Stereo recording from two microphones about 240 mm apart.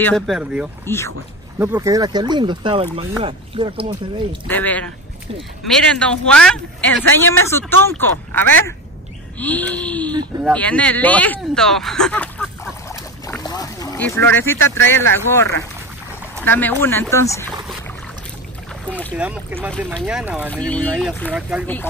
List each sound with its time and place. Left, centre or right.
0.0 s speech: centre
0.8 s speech: centre
1.6 s speech: centre
4.5 s speech: centre
5.9 s speech: centre
18.9 s speech: centre
19.1 s speech: centre
20.4 s speech: centre
21.3 s speech: centre